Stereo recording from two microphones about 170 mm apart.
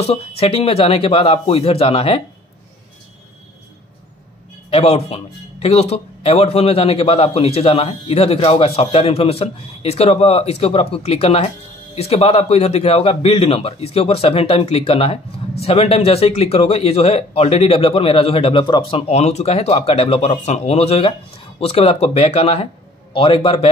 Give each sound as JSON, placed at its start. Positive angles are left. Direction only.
{"t": 0.4, "sound": "speech", "side_deg": 35}
{"t": 4.6, "sound": "speech", "side_deg": 35}